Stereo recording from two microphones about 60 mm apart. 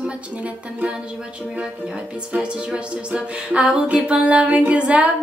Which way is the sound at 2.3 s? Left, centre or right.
Centre.